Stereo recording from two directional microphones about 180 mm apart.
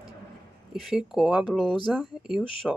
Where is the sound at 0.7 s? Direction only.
Centre (ahead or behind).